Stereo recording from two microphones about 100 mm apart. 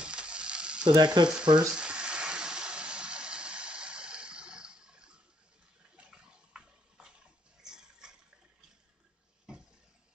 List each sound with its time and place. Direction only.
0.0 s frying: 10° right (ahead or behind)
0.8 s frying: 50° right (ahead or behind)
1.7 s a sound: 10° right (ahead or behind)